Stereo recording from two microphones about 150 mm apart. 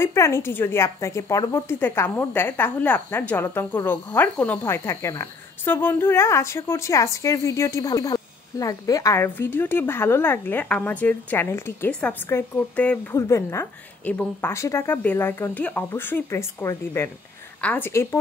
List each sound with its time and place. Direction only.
0.0 s a woman's voice: 15° left (ahead or behind)
13.1 s a woman's voice: 20° left (ahead or behind)